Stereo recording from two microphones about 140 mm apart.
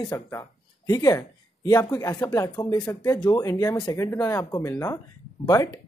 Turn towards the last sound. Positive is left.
turn(degrees=25)  # may be behind; listen again after turning